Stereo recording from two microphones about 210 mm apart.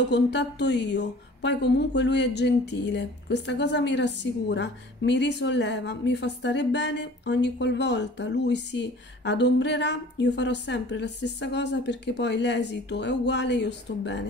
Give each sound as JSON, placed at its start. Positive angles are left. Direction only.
{"t": 0.1, "sound": "a woman's voice", "side_deg": 55}